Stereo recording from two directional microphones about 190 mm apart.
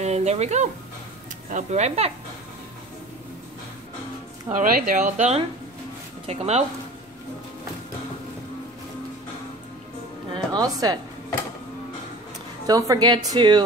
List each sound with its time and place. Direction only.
0.0 s speech: 35° right (ahead or behind)
4.5 s speech: 45° right (ahead or behind)
10.3 s speech: 20° right (ahead or behind)
12.6 s speech: 20° right (ahead or behind)